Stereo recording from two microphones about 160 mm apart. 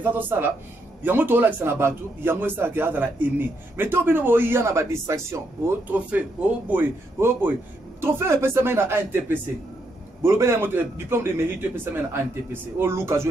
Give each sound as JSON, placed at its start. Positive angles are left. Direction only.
{"t": 0.0, "sound": "a man's voice", "side_deg": -10}